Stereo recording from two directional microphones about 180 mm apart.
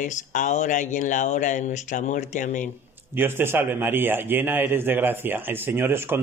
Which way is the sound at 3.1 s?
10° right (ahead or behind).